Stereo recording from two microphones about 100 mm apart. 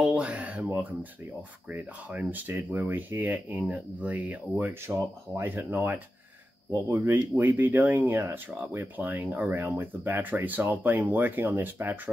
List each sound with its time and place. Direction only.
0.0 s speech: 15° right (ahead or behind)